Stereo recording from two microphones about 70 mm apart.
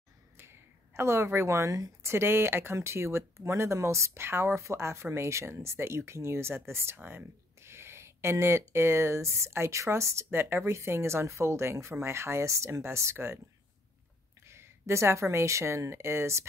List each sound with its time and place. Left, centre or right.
0.4 s a sound: right
2.1 s speech: right
14.5 s a woman's voice: right